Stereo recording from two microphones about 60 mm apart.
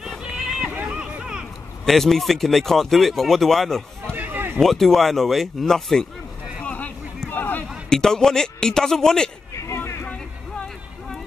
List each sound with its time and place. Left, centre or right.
0.7 s a sound: right
1.9 s speech: centre
4.1 s run: right
4.6 s speech: centre
6.6 s a sound: left
7.9 s a man's voice: centre